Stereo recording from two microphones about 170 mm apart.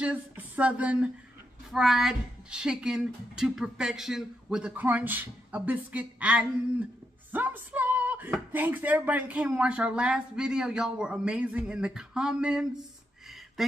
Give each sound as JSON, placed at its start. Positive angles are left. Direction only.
{"t": 0.0, "sound": "speech", "side_deg": -10}
{"t": 7.3, "sound": "a sound", "side_deg": -10}
{"t": 8.5, "sound": "speech", "side_deg": -10}